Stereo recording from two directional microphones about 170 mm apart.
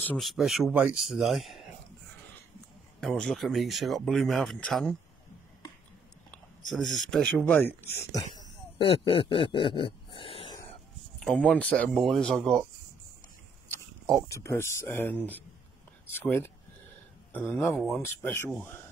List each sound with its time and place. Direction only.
0.0 s speech: 5° left (ahead or behind)
3.0 s speech: 5° left (ahead or behind)
6.3 s speech: centre (ahead or behind)
8.7 s speech: 30° left (ahead or behind)
11.2 s speech: 5° left (ahead or behind)
14.2 s speech: 20° left (ahead or behind); by 18.0 s centre (ahead or behind)
18.0 s speech: 15° left (ahead or behind)